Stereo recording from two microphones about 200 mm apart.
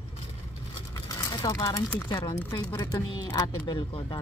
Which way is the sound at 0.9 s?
15° left (ahead or behind).